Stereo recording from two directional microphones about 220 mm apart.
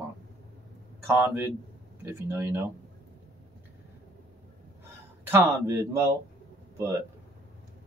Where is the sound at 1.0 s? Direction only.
10° right (ahead or behind).